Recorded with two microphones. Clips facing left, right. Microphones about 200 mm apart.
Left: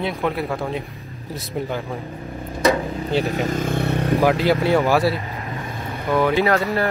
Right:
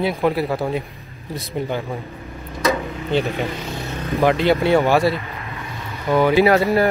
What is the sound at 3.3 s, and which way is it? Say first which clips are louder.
Vehicle: left 4 dB; 45° left (ahead or behind).